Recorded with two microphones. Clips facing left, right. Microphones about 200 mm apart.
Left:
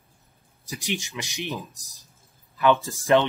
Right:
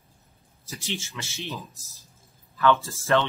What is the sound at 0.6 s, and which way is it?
Speech, 15° left (ahead or behind).